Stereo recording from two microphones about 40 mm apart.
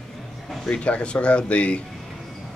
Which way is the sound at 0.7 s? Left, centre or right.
Left.